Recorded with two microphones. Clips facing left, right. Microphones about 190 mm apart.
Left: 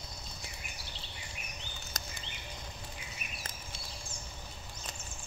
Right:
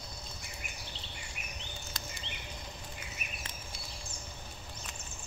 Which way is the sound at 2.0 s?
45° left (ahead or behind).